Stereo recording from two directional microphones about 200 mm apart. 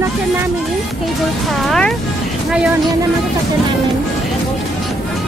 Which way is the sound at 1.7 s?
5° left (ahead or behind).